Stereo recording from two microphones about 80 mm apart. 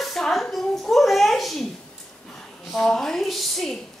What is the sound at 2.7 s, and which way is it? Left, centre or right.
A woman's voice, centre.